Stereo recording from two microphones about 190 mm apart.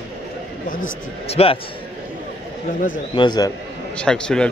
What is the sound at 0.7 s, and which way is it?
Speech, 45° left (ahead or behind).